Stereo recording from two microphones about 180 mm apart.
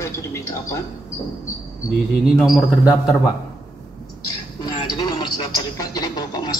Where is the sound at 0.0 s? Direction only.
15° left (ahead or behind).